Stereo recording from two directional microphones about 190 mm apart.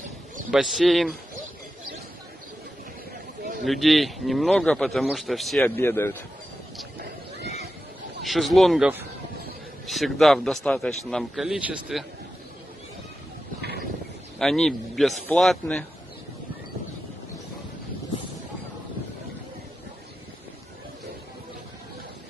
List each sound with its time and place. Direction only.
0.5 s speech: centre (ahead or behind)
3.6 s speech: centre (ahead or behind)
5.6 s speech: 15° left (ahead or behind)
8.2 s speech: centre (ahead or behind)
13.6 s a sound: 55° right (ahead or behind)
14.4 s speech: centre (ahead or behind)